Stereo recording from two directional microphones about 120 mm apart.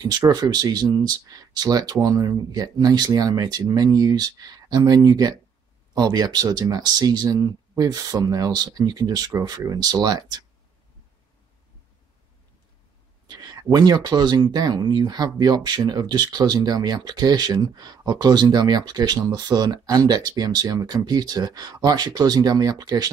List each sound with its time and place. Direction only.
0.0 s speech: 35° right (ahead or behind)
13.3 s speech: 35° right (ahead or behind)